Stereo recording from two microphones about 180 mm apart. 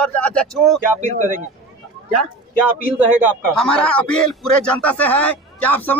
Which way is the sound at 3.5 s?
5° left (ahead or behind).